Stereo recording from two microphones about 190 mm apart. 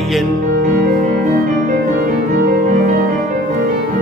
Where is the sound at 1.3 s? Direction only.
50° right (ahead or behind).